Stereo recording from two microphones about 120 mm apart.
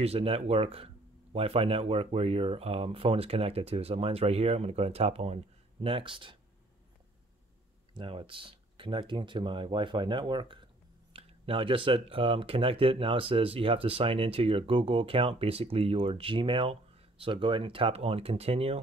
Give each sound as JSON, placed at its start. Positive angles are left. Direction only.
{"t": 0.0, "sound": "speech", "side_deg": -55}
{"t": 7.9, "sound": "speech", "side_deg": -45}